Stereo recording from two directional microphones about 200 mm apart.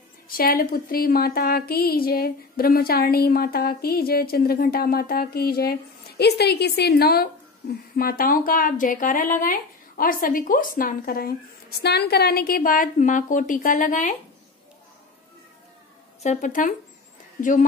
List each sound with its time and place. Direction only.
0.4 s speech: 45° left (ahead or behind)
16.2 s speech: 40° left (ahead or behind)